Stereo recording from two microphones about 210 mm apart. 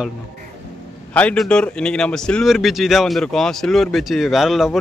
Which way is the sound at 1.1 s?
5° left (ahead or behind).